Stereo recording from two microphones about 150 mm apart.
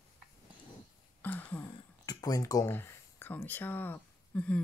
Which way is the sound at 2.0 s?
25° left (ahead or behind).